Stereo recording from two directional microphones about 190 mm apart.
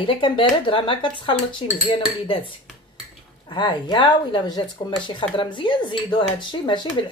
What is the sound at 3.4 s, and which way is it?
A woman's voice, 25° left (ahead or behind).